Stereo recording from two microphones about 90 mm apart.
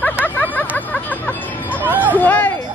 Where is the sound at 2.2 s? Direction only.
20° left (ahead or behind).